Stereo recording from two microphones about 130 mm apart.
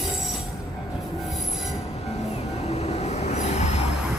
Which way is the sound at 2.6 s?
55° left (ahead or behind).